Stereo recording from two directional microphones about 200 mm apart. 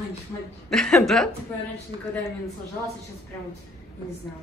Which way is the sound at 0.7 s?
Centre (ahead or behind).